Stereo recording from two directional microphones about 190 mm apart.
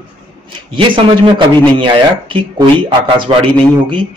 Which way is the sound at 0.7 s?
25° right (ahead or behind).